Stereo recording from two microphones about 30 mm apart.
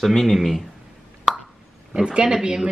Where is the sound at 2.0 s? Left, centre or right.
Right.